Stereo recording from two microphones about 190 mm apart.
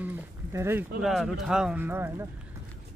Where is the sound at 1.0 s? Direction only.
Centre (ahead or behind).